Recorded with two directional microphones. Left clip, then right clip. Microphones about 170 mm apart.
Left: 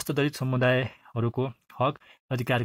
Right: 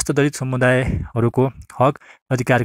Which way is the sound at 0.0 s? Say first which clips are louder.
Right 9 dB; 40° right (ahead or behind).